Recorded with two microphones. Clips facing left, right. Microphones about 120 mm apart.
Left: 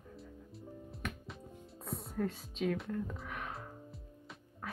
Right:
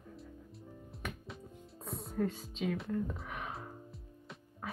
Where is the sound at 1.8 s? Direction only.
Centre (ahead or behind).